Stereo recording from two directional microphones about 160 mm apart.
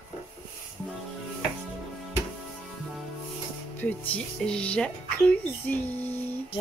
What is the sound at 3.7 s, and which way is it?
Speech, 10° left (ahead or behind).